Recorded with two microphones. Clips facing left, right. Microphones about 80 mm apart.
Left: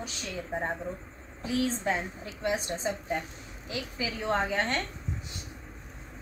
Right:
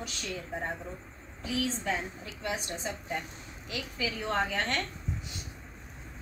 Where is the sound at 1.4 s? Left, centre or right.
Left.